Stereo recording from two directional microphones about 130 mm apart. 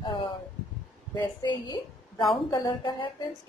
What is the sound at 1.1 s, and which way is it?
A woman's voice, 30° left (ahead or behind).